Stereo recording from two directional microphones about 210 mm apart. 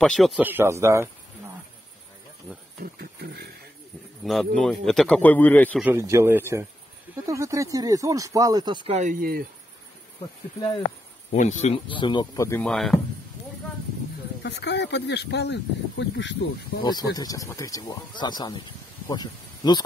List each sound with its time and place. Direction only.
0.0 s a man's voice: centre (ahead or behind)
0.4 s speech: 10° right (ahead or behind)
2.8 s a sound: 50° right (ahead or behind)
4.2 s a man's voice: centre (ahead or behind)
5.9 s speech: 15° right (ahead or behind); by 9.1 s 30° right (ahead or behind)
9.2 s a sound: 45° right (ahead or behind)
11.3 s speech: 35° left (ahead or behind); by 13.0 s centre (ahead or behind)
14.4 s speech: 55° left (ahead or behind)
16.8 s speech: 20° left (ahead or behind)